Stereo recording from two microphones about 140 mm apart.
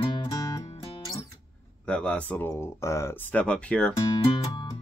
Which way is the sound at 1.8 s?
10° left (ahead or behind).